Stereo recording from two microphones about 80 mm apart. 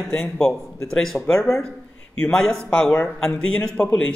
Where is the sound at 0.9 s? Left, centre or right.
Centre.